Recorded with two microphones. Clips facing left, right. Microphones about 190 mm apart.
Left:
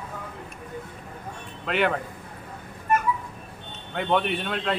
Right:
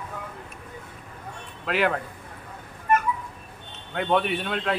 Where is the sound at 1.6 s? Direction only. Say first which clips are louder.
Even; centre (ahead or behind).